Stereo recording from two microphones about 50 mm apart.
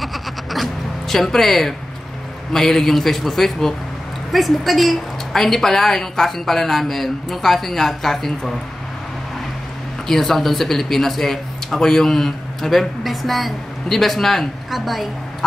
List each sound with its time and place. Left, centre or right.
0.0 s bleat: centre
2.5 s speech: centre
10.0 s speech: centre